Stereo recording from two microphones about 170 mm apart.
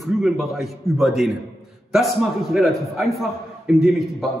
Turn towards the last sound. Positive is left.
turn(degrees=0)  # may be behind; listen again after turning